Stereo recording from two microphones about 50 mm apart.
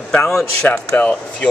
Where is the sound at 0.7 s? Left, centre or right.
Left.